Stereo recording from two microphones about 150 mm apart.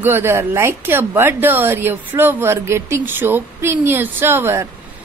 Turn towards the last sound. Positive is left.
turn(degrees=-15)  # may be behind; listen again after turning